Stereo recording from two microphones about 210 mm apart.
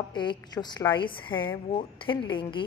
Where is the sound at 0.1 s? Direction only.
20° left (ahead or behind).